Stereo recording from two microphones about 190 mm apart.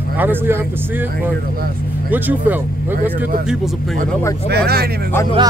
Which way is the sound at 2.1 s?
10° right (ahead or behind).